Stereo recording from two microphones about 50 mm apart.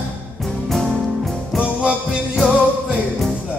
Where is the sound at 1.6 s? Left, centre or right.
Right.